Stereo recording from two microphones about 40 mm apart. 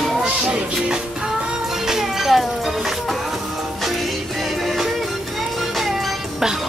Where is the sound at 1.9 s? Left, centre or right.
Centre.